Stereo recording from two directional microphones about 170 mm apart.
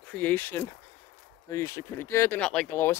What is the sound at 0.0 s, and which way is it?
Speech, 10° left (ahead or behind).